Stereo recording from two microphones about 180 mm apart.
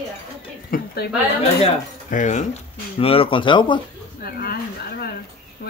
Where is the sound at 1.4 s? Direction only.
40° left (ahead or behind).